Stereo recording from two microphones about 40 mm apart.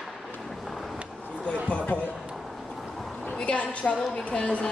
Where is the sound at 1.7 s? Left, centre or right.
Left.